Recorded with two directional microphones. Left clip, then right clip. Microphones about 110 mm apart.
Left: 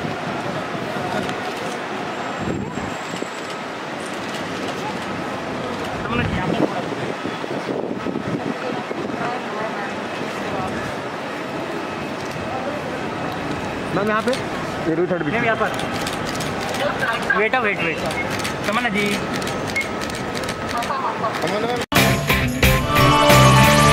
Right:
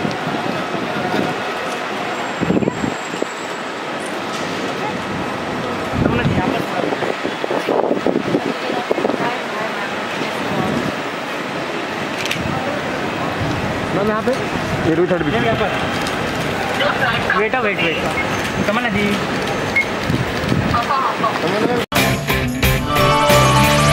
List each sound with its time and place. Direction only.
17.4 s speech: 55° left (ahead or behind)
21.9 s music: centre (ahead or behind)